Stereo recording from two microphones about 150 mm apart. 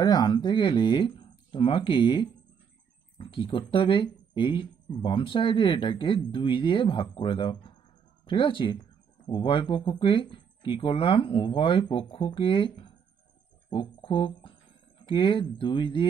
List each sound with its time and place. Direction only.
0.0 s speech: 25° left (ahead or behind)